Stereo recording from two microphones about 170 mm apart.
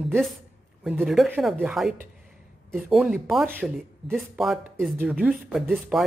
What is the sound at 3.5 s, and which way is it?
Speech, 10° right (ahead or behind).